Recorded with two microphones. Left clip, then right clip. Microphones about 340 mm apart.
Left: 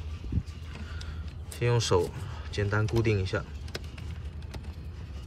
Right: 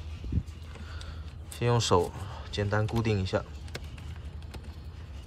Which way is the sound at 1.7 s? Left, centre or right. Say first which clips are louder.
Right 1 dB; centre.